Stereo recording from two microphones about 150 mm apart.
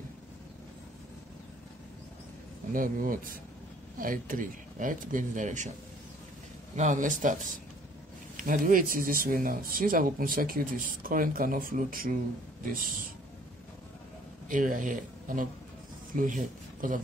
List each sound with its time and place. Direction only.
2.7 s speech: 65° right (ahead or behind)
6.7 s speech: 55° right (ahead or behind)
14.5 s speech: 60° right (ahead or behind)